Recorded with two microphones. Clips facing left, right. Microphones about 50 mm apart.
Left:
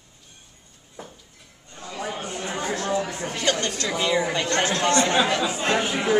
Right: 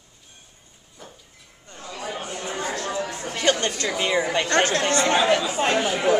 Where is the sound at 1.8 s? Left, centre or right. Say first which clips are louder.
Left 1 dB; left.